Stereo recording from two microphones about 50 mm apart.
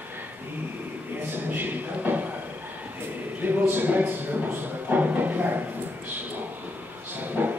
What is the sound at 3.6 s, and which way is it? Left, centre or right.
A man's voice, right.